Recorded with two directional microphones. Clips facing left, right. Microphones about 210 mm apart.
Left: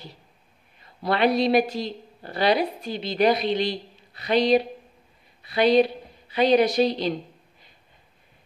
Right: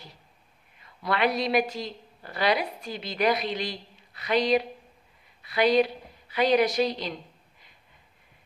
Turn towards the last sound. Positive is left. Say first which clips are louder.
# left 5 dB
turn(degrees=30)  # may be behind; listen again after turning